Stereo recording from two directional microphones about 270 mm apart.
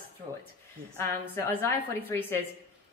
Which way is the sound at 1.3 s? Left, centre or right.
Centre.